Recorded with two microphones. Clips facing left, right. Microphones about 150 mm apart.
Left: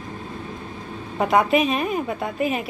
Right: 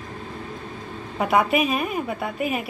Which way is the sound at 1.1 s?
5° right (ahead or behind).